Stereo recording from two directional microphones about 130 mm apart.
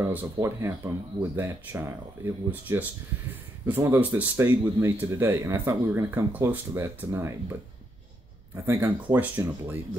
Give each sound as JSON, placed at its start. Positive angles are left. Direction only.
{"t": 0.0, "sound": "speech", "side_deg": -15}
{"t": 8.6, "sound": "speech", "side_deg": -20}